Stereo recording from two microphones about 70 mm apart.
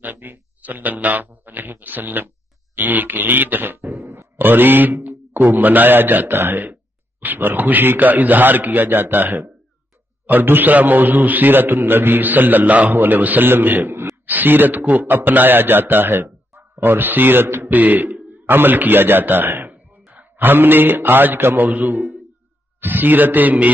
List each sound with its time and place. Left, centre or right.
0.0 s a man's voice: right